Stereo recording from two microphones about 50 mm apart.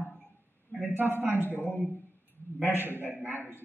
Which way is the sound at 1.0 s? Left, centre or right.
Right.